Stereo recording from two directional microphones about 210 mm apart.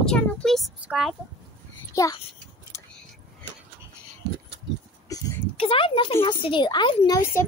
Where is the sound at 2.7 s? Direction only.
15° left (ahead or behind).